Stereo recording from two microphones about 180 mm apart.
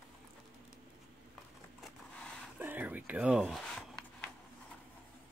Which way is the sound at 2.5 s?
10° right (ahead or behind).